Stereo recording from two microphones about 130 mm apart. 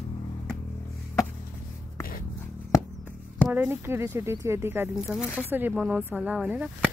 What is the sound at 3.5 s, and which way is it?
Speech, 20° right (ahead or behind).